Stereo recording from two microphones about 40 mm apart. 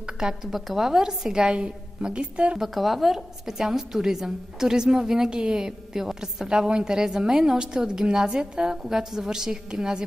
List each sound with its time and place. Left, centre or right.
0.0 s a woman's voice: centre
2.6 s a woman's voice: centre